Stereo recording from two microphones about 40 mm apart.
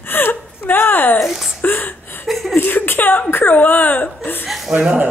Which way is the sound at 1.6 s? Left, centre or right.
Left.